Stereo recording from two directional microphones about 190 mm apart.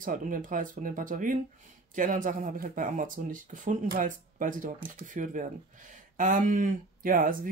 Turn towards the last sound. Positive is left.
turn(degrees=-45)  # may be behind; listen again after turning